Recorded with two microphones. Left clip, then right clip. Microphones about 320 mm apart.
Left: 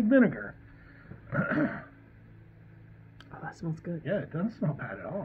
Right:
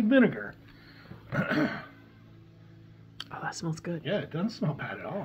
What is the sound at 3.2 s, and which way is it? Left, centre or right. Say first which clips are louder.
Speech: right 6 dB; centre.